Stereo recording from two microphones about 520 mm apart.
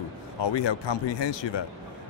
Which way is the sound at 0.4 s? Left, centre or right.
Left.